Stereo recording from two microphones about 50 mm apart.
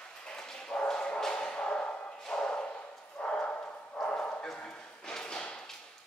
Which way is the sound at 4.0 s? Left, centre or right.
Left.